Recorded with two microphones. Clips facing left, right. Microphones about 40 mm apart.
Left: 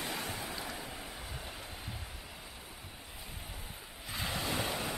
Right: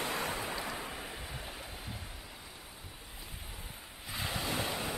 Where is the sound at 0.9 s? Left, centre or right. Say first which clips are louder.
Right 2 dB; centre.